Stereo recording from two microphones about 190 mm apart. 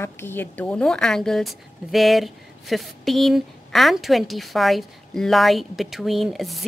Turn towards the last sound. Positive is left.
turn(degrees=0)  # may be behind; listen again after turning